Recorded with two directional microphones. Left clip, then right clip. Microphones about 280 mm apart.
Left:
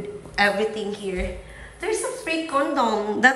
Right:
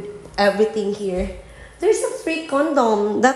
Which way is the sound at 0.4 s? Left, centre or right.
Right.